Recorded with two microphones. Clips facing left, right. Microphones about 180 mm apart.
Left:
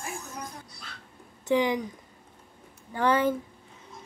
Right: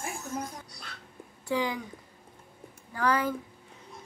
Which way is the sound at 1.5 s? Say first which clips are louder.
Left 5 dB; 20° left (ahead or behind).